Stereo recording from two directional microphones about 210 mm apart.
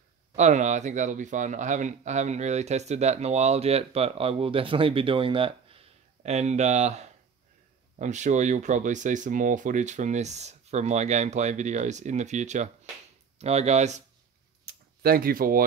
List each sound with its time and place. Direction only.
0.4 s speech: 35° right (ahead or behind)
14.6 s tick-tock: 45° right (ahead or behind)